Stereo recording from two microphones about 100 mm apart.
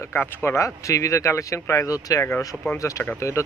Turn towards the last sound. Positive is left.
turn(degrees=30)  # may be behind; listen again after turning